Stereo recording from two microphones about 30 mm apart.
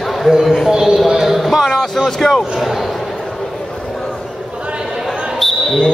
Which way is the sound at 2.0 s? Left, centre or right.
Centre.